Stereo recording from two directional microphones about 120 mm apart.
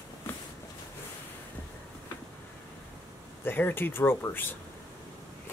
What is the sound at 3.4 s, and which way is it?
Speech, 15° left (ahead or behind).